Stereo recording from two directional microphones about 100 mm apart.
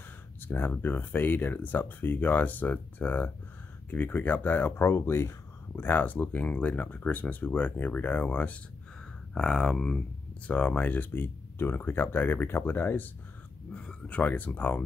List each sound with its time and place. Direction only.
0.4 s speech: 20° left (ahead or behind)